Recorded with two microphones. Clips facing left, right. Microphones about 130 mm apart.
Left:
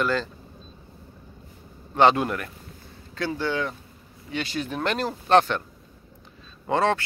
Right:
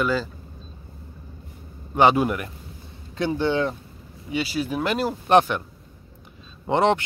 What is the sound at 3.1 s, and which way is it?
Speech, 20° right (ahead or behind).